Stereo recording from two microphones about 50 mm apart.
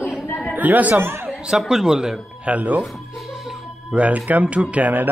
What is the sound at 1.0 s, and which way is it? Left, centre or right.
Speech, right.